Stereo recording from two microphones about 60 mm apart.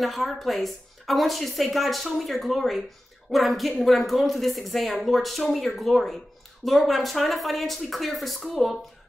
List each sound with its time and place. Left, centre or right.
0.0 s a woman's voice: centre